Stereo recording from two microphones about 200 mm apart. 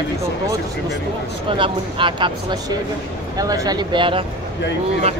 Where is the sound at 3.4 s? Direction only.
20° right (ahead or behind).